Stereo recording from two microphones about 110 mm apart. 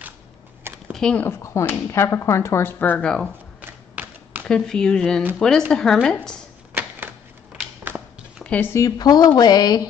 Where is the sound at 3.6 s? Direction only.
15° right (ahead or behind).